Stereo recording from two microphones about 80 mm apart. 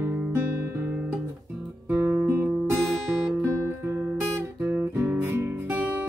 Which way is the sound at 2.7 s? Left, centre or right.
Centre.